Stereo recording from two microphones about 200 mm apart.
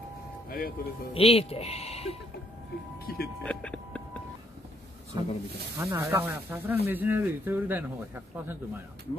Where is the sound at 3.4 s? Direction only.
5° left (ahead or behind).